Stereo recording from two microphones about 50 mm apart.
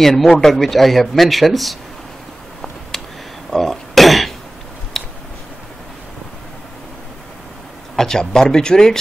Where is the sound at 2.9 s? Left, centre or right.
Centre.